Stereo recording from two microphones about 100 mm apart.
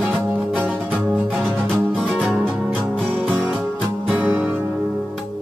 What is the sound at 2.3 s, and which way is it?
Music, 15° right (ahead or behind).